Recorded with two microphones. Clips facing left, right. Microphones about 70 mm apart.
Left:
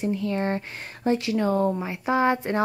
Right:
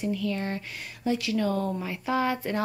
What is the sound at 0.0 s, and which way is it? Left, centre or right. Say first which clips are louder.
A woman's voice: left 4 dB; left.